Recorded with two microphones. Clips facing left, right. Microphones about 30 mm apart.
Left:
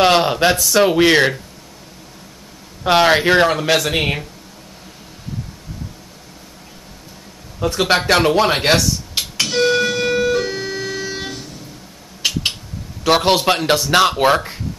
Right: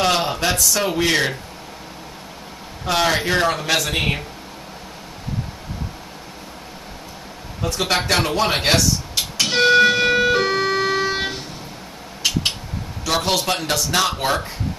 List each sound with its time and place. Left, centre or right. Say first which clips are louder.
0.0 s speech: left 6 dB; left
2.8 s speech: left 6 dB; left
3.4 s speech: left 4 dB; centre
7.6 s speech: left 5 dB; centre
9.5 s siren: right 3 dB; right
12.2 s a sound: left 1 dB; centre
13.0 s speech: left 6 dB; left